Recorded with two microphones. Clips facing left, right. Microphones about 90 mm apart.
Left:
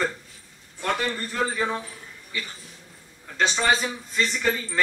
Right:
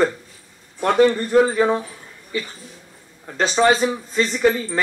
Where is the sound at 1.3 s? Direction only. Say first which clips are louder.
Right 10 dB; 40° right (ahead or behind).